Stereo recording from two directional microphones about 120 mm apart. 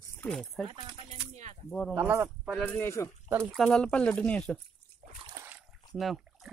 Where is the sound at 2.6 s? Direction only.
15° left (ahead or behind).